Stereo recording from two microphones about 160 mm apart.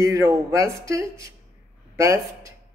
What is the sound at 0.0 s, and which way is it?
Speech, 20° right (ahead or behind).